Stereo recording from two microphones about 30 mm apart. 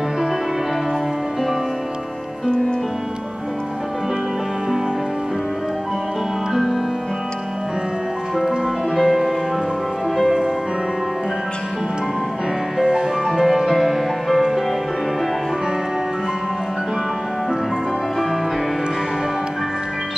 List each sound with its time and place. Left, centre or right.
6.5 s music: centre
8.4 s music: centre
12.8 s music: right
13.6 s music: centre